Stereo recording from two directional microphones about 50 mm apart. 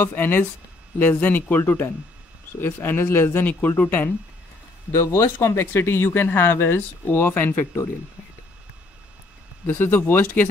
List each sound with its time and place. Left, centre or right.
0.1 s speech: left
3.3 s speech: left
4.9 s speech: left
9.8 s speech: left